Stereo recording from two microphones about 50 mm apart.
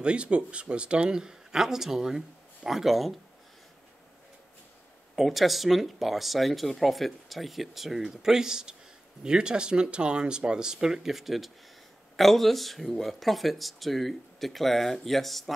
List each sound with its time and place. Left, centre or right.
0.0 s speech: right; by 3.2 s centre
5.1 s speech: centre